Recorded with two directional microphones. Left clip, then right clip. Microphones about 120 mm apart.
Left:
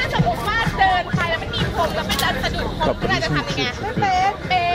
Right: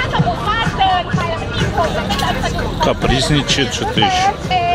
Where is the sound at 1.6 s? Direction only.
25° left (ahead or behind).